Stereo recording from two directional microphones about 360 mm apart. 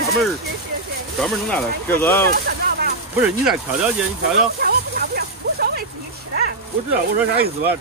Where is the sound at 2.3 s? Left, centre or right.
Right.